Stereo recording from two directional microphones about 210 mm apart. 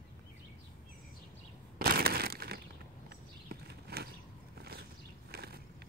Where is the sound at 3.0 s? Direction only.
50° right (ahead or behind).